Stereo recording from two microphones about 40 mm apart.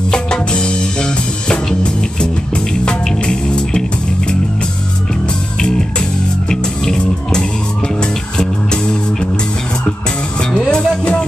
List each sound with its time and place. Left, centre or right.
0.1 s music: left
5.6 s music: centre
10.7 s music: left